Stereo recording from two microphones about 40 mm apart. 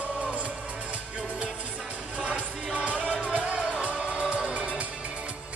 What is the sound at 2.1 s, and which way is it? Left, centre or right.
Music, right.